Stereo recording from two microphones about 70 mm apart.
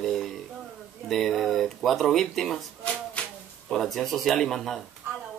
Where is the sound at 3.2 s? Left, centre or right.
Centre.